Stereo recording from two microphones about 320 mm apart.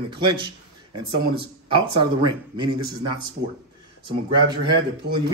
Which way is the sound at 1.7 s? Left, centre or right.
Centre.